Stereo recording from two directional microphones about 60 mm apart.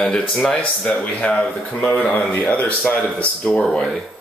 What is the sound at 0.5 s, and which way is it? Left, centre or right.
Speech, left.